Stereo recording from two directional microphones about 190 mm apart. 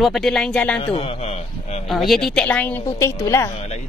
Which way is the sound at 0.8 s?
30° left (ahead or behind).